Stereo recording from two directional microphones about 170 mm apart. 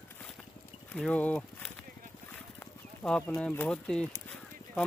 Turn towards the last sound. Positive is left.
turn(degrees=10)  # may be behind; listen again after turning